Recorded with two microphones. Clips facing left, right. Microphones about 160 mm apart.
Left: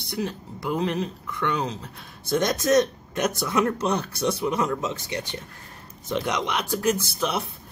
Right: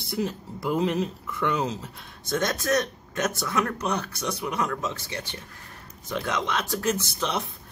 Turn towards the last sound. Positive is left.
turn(degrees=10)  # may be behind; listen again after turning